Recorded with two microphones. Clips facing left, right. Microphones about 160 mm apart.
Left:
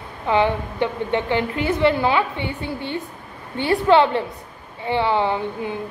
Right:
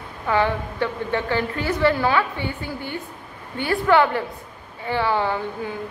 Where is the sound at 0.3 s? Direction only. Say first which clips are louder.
Left 2 dB; 20° left (ahead or behind).